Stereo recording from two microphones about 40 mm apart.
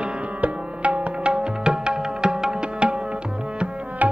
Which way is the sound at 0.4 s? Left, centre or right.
Right.